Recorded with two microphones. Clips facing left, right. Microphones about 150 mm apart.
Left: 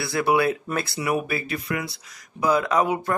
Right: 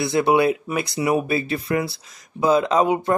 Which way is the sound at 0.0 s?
20° right (ahead or behind).